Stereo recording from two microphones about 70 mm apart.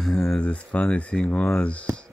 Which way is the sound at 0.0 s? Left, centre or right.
Centre.